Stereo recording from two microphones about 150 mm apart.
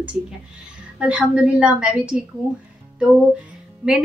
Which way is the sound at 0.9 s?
5° right (ahead or behind).